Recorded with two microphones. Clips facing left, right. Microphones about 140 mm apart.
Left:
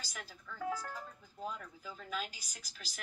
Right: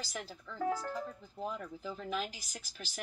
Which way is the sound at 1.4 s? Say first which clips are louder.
Right 3 dB; 15° right (ahead or behind).